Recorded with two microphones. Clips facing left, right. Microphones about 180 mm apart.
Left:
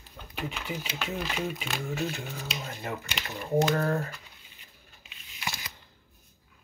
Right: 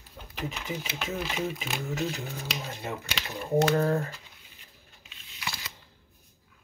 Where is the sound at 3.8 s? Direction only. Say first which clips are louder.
Right 2 dB; 25° right (ahead or behind).